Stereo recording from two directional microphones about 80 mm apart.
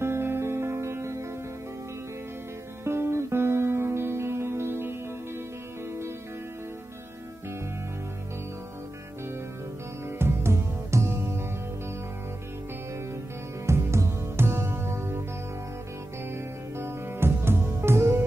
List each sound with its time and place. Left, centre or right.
0.0 s music: right
2.8 s music: right
10.1 s music: right
13.7 s music: right
16.7 s music: right